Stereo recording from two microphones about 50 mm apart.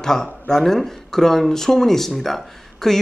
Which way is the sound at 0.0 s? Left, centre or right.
Centre.